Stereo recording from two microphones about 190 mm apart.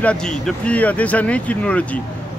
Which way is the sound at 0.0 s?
5° left (ahead or behind).